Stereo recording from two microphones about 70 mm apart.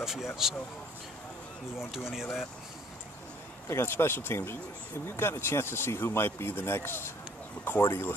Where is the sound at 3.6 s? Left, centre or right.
Left.